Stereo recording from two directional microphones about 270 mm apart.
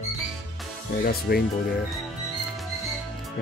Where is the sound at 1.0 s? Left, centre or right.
Left.